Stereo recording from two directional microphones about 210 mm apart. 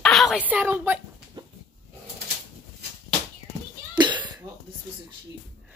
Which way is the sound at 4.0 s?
20° right (ahead or behind).